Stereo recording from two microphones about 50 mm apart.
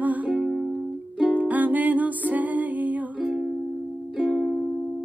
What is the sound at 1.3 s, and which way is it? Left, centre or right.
Music, right.